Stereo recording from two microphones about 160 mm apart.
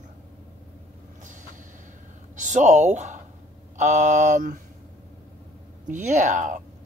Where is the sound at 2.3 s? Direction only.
50° right (ahead or behind).